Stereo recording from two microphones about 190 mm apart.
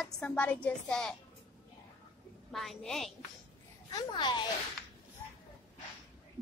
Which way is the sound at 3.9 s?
20° left (ahead or behind).